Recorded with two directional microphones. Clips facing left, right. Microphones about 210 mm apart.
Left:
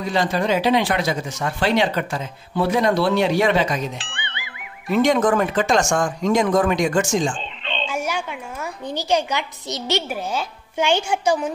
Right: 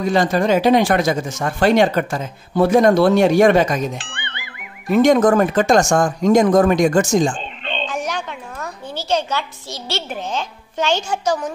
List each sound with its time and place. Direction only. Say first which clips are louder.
0.0 s speech: right 4 dB; 45° right (ahead or behind)
7.9 s a woman's voice: right 1 dB; 10° left (ahead or behind)